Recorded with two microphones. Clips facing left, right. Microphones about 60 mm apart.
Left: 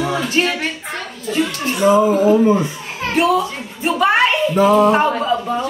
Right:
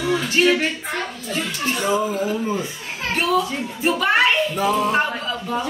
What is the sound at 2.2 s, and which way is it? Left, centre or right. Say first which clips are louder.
Speech: left 11 dB; left.